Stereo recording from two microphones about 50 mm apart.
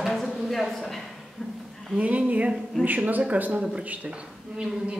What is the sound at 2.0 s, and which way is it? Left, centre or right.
A woman's voice, right.